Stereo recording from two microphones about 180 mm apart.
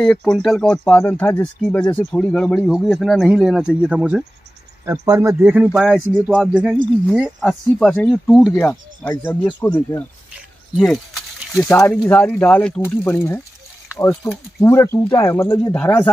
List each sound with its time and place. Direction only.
0.0 s speech: 5° left (ahead or behind)
4.8 s a man's voice: 20° right (ahead or behind); by 8.5 s centre (ahead or behind)
8.5 s speech: 15° left (ahead or behind)
10.8 s speech: 5° left (ahead or behind)